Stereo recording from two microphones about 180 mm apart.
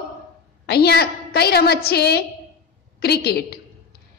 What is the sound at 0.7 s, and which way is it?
A woman's voice, 60° left (ahead or behind).